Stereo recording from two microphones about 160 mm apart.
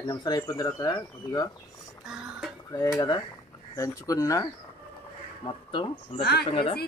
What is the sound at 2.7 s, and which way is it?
Speech, 20° left (ahead or behind).